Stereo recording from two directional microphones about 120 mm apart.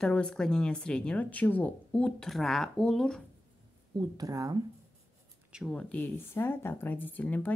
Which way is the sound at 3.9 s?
30° right (ahead or behind).